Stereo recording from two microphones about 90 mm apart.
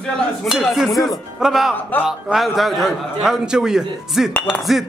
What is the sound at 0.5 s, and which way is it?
A man's voice, centre (ahead or behind).